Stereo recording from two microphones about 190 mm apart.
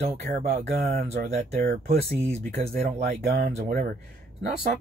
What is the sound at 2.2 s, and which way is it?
Speech, 30° right (ahead or behind).